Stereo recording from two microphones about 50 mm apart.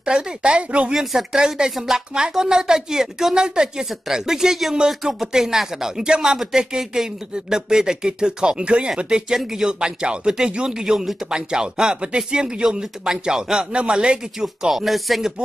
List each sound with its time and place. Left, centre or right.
0.0 s speech: centre
14.7 s speech: centre